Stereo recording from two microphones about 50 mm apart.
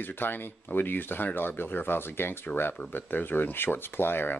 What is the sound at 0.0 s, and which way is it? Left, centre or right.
Speech, left.